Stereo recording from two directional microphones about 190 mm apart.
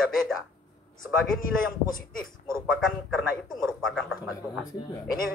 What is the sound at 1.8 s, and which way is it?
Speech, 45° left (ahead or behind).